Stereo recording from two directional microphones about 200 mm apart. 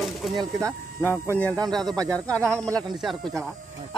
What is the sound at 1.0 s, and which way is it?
Speech, 10° left (ahead or behind).